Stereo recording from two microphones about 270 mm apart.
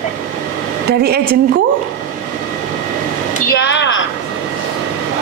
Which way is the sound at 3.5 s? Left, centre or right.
Left.